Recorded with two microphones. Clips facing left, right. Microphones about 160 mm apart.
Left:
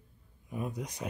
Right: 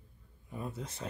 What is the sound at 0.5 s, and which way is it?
Speech, 15° left (ahead or behind).